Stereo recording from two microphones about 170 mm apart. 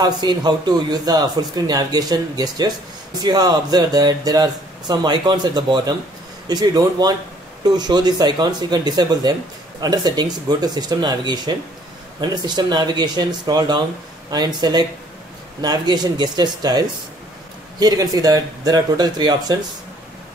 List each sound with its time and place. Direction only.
0.0 s speech: 25° right (ahead or behind)